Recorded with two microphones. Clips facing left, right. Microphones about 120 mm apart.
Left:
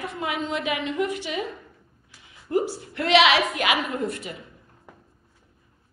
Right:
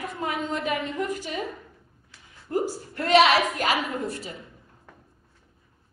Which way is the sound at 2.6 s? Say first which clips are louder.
Left 1 dB; 40° right (ahead or behind).